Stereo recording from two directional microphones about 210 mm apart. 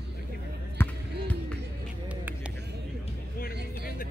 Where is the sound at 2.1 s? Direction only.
5° right (ahead or behind).